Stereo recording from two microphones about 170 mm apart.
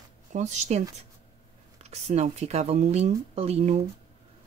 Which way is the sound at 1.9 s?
40° right (ahead or behind).